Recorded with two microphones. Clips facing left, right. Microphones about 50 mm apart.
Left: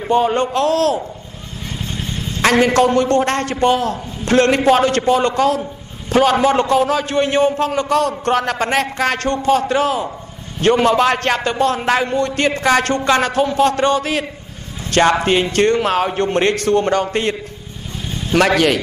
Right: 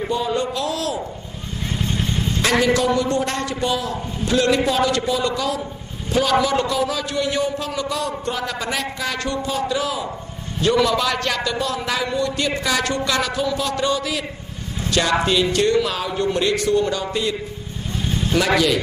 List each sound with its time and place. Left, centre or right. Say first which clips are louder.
0.1 s a man's voice: left 9 dB; left
2.0 s vehicle: right 2 dB; centre
2.4 s a man's voice: left 5 dB; left